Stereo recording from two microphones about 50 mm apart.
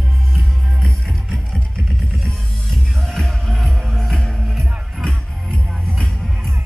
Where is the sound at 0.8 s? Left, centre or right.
Centre.